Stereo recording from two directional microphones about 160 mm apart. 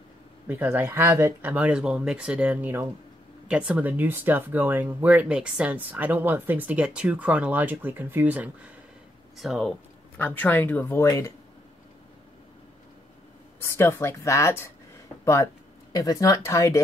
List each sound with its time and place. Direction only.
0.5 s speech: 10° right (ahead or behind)
9.4 s speech: centre (ahead or behind); by 11.3 s 20° left (ahead or behind)
13.7 s speech: 15° left (ahead or behind)